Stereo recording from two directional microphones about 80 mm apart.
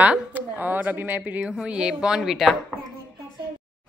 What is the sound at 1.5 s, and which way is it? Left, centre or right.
A woman's voice, centre.